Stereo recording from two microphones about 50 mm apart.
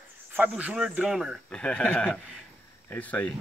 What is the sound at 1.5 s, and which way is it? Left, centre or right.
Speech, centre.